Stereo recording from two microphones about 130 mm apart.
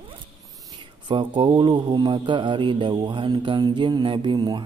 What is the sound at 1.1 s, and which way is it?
Speech, 40° right (ahead or behind).